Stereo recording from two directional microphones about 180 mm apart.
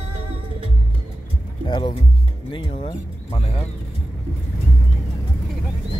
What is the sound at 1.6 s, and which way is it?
Speech, 30° left (ahead or behind).